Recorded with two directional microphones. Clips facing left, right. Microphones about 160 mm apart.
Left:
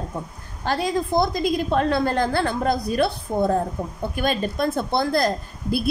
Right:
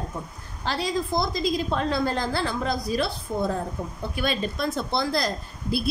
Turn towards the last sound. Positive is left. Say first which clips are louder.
# left 3 dB
turn(degrees=50)  # may be behind; listen again after turning